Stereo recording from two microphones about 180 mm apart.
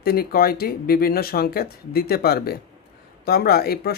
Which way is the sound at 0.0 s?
55° left (ahead or behind).